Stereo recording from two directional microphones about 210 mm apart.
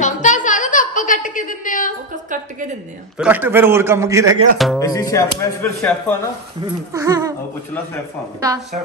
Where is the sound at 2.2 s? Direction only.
40° right (ahead or behind).